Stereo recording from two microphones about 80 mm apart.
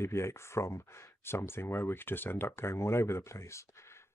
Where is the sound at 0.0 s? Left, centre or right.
Left.